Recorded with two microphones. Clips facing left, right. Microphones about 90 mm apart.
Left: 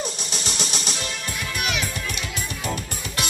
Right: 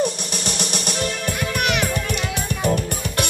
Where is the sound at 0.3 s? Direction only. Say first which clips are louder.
Right 4 dB; 55° right (ahead or behind).